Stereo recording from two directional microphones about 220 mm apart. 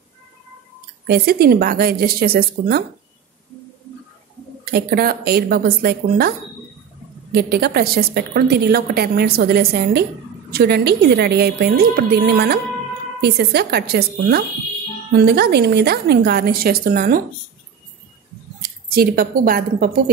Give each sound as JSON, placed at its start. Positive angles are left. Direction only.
{"t": 1.0, "sound": "a woman's voice", "side_deg": -45}
{"t": 4.6, "sound": "a woman's voice", "side_deg": -45}
{"t": 7.3, "sound": "a woman's voice", "side_deg": -45}
{"t": 18.9, "sound": "a woman's voice", "side_deg": -40}